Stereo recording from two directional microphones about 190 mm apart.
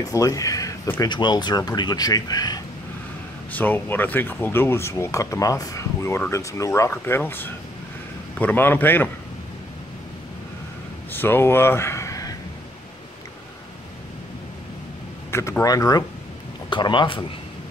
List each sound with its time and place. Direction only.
0.0 s speech: 20° left (ahead or behind)
3.5 s speech: 10° left (ahead or behind)
11.1 s a sound: 10° left (ahead or behind)
15.3 s speech: 15° left (ahead or behind)